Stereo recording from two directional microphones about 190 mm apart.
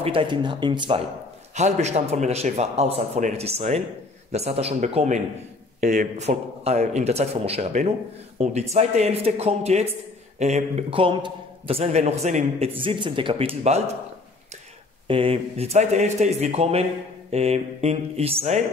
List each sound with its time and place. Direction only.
0.0 s speech: 25° right (ahead or behind)
1.5 s a man's voice: 35° right (ahead or behind)
15.0 s a man's voice: 30° right (ahead or behind)